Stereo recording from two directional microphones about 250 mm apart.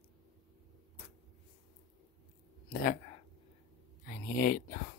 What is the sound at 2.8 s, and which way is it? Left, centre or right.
Speech, left.